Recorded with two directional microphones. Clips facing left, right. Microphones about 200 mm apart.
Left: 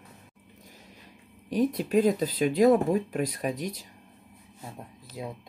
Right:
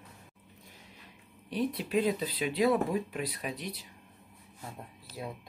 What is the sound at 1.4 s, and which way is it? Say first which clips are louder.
Speech: left 6 dB; 45° left (ahead or behind).